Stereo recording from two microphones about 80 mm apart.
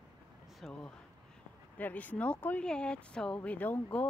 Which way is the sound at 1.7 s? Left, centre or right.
Centre.